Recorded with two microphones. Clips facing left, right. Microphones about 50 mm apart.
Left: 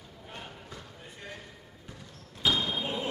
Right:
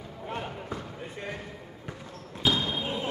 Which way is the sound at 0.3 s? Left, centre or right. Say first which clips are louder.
Right 10 dB; right.